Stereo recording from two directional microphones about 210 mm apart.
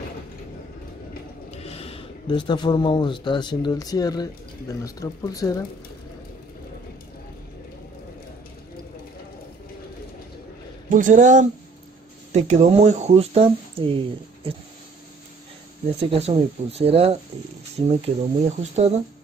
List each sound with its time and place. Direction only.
1.6 s speech: 30° left (ahead or behind)
10.9 s speech: 40° right (ahead or behind)
16.0 s speech: 30° right (ahead or behind)